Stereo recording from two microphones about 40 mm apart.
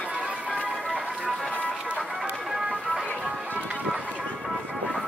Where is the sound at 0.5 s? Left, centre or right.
Left.